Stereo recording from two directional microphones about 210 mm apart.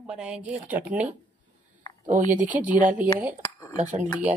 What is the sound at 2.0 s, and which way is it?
Speech, 35° right (ahead or behind).